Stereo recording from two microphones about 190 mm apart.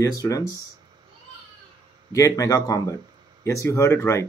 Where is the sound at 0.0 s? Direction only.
15° left (ahead or behind).